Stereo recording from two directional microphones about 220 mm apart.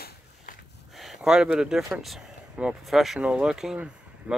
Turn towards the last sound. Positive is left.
turn(degrees=-5)  # may be behind; listen again after turning